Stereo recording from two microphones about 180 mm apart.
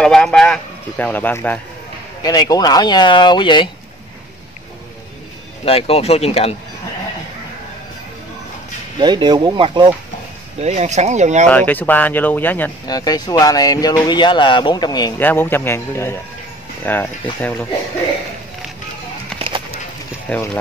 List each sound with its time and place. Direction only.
0.0 s a sound: 5° left (ahead or behind)
2.2 s speech: 20° left (ahead or behind)
5.7 s speech: 35° left (ahead or behind)
9.0 s speech: 25° right (ahead or behind)
10.6 s speech: 40° right (ahead or behind)
11.4 s speech: 10° left (ahead or behind)
12.8 s speech: 20° left (ahead or behind)
15.2 s speech: 10° left (ahead or behind)
19.3 s a sound: 30° right (ahead or behind)
20.3 s speech: 10° left (ahead or behind)